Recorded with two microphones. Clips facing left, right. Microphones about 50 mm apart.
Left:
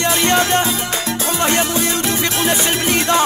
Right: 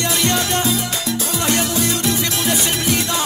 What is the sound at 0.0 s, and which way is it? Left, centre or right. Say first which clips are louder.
Music: left 4 dB; left.